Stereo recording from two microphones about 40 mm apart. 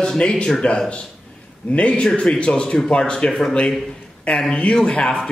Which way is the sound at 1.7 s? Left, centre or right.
Left.